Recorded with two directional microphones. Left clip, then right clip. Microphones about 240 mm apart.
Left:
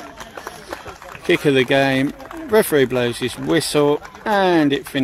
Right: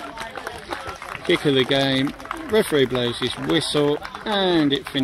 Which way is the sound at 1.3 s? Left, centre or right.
Left.